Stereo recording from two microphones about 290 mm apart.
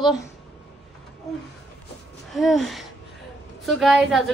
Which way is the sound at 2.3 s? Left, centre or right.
Centre.